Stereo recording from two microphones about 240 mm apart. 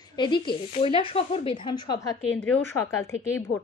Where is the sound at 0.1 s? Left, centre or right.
Centre.